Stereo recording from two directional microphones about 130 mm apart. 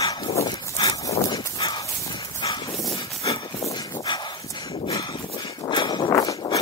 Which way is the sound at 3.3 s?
30° left (ahead or behind).